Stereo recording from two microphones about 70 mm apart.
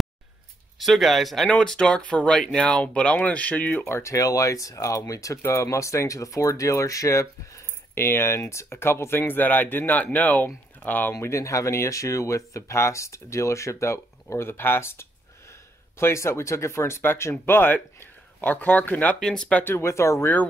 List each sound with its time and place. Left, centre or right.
0.7 s speech: centre
1.5 s speech: centre; by 4.0 s left
4.0 s speech: left
5.4 s speech: left
11.1 s speech: left
19.1 s speech: centre
19.6 s speech: left